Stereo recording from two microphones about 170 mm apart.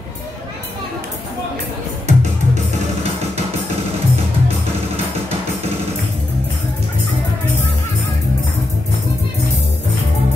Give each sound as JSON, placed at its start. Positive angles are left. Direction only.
{"t": 2.0, "sound": "music", "side_deg": -40}